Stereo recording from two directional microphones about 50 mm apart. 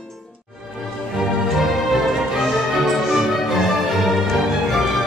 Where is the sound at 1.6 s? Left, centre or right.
Centre.